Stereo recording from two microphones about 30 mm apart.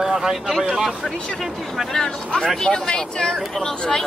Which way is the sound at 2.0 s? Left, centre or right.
Left.